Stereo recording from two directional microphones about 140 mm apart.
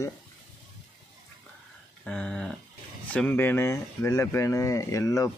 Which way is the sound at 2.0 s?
5° left (ahead or behind).